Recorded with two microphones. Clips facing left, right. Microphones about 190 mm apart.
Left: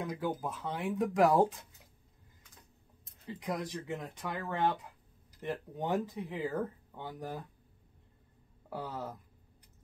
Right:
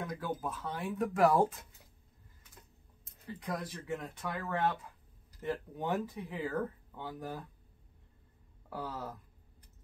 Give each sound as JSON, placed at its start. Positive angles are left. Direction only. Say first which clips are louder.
{"t": 0.0, "sound": "speech", "louder": "left 2 dB", "side_deg": 15}
{"t": 3.3, "sound": "speech", "louder": "left 2 dB", "side_deg": 20}
{"t": 5.9, "sound": "speech", "louder": "left 2 dB", "side_deg": 0}
{"t": 6.3, "sound": "speech", "louder": "even", "side_deg": 15}
{"t": 8.6, "sound": "speech", "louder": "left 1 dB", "side_deg": 20}